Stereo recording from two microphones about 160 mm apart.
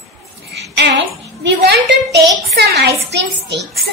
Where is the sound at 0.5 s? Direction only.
90° right.